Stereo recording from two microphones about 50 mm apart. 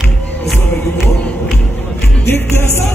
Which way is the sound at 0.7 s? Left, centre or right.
Left.